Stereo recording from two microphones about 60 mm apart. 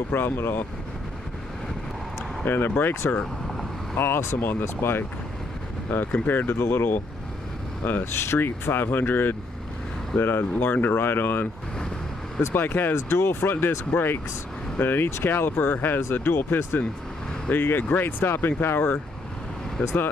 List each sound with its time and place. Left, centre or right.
0.1 s speech: left
2.4 s speech: left
4.4 s speech: left
8.1 s speech: left